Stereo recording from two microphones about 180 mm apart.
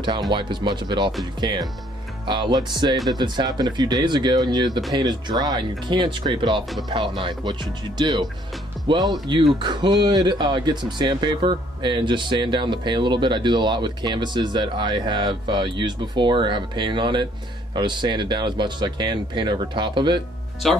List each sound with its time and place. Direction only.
0.3 s speech: 25° right (ahead or behind)
20.6 s speech: centre (ahead or behind)